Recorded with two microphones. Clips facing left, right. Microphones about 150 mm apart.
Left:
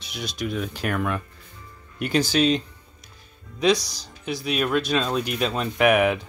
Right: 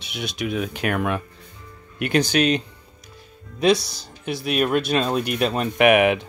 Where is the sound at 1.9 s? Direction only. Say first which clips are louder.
Right 2 dB; 60° right (ahead or behind).